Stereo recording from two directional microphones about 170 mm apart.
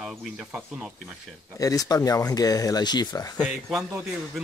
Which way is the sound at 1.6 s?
20° left (ahead or behind).